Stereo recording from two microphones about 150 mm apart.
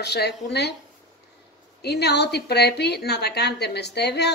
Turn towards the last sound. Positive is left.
turn(degrees=90)